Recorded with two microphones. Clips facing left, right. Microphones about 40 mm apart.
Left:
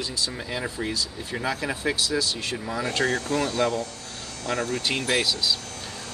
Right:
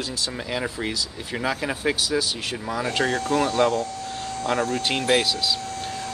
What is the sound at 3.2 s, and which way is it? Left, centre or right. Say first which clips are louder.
Speech: right 4 dB; right.